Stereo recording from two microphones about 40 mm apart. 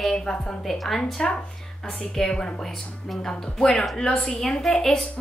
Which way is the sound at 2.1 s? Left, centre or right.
Left.